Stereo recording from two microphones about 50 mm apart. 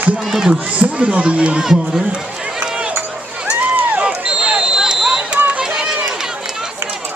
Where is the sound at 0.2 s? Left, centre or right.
Centre.